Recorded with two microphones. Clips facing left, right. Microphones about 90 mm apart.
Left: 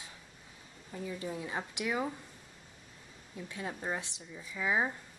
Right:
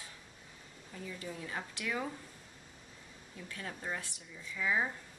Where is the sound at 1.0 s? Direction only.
25° left (ahead or behind).